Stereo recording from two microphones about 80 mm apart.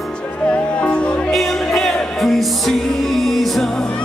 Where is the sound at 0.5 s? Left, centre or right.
Centre.